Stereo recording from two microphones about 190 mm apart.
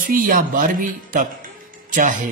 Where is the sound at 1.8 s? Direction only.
40° right (ahead or behind).